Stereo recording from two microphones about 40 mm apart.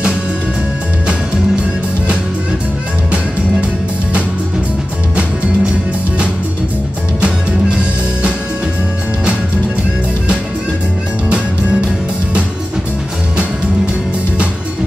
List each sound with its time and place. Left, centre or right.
7.2 s music: right
11.2 s music: right